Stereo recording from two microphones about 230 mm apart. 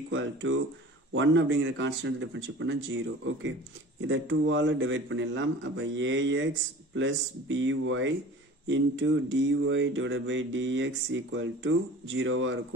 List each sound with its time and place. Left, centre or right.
0.1 s speech: right
4.0 s speech: right